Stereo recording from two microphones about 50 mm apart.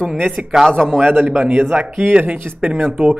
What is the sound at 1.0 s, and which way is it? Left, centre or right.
Speech, right.